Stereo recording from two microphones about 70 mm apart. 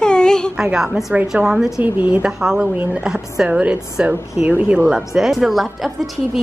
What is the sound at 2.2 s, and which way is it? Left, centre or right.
A woman's voice, centre.